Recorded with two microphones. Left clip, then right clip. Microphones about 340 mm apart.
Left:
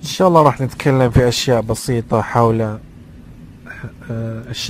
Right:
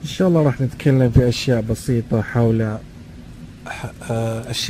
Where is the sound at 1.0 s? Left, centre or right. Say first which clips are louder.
Left 4 dB; left.